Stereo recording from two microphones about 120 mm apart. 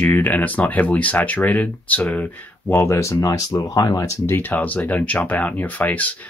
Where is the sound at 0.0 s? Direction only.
15° left (ahead or behind).